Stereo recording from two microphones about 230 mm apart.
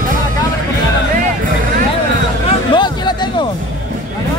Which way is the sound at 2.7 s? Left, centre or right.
Centre.